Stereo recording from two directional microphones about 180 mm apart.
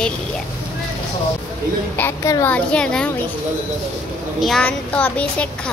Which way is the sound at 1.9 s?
15° left (ahead or behind).